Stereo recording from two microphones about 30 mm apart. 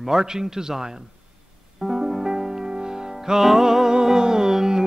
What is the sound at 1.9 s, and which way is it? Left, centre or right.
Music, centre.